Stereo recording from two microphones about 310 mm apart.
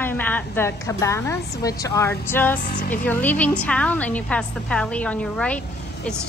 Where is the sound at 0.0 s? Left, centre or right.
Centre.